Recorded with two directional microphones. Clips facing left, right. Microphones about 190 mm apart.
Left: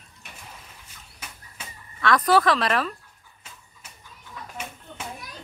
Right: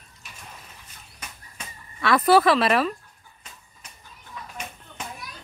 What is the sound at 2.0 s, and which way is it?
Speech, 5° right (ahead or behind).